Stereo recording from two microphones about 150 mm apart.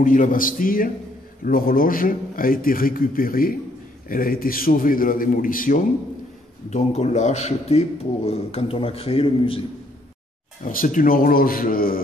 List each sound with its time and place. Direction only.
0.0 s a man's voice: 65° left (ahead or behind)
6.7 s a man's voice: 50° left (ahead or behind)
10.6 s a man's voice: 65° left (ahead or behind)